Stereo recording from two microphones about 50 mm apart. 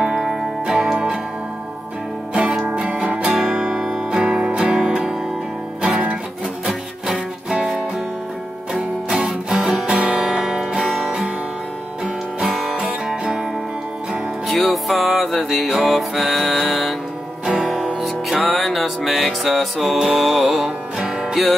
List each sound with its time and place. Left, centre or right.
0.0 s music: centre
2.7 s music: centre
3.3 s guitar: centre
4.3 s music: centre
5.8 s music: right
6.7 s music: centre
9.1 s music: centre
14.5 s music: centre